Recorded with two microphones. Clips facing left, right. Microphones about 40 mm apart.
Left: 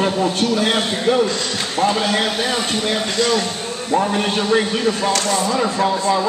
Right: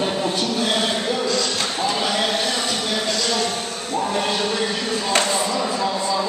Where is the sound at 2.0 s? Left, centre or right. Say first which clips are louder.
Left 3 dB; left.